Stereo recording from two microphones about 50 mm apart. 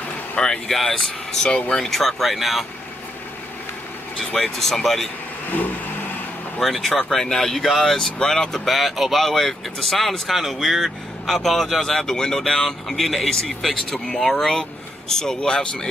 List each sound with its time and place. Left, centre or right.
0.4 s speech: centre
1.9 s speech: centre
4.4 s speech: centre
5.5 s vehicle: left
6.6 s speech: centre